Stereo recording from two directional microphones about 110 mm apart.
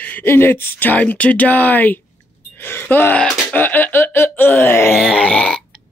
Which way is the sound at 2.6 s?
20° left (ahead or behind).